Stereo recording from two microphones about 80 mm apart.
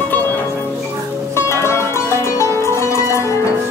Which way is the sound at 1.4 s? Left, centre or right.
Left.